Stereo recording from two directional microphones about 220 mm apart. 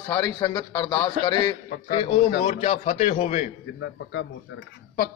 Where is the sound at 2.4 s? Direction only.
30° left (ahead or behind).